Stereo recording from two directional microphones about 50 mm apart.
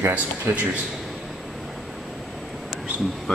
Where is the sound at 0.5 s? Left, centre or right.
Right.